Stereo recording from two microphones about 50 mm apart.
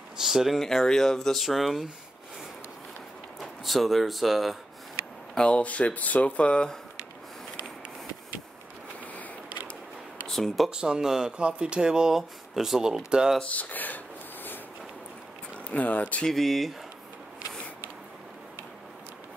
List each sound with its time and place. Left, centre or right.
0.2 s speech: centre
0.6 s speech: centre
3.3 s speech: centre
5.3 s speech: left
10.2 s speech: centre
10.7 s speech: centre
13.4 s a sound: left
15.5 s speech: left
16.3 s speech: centre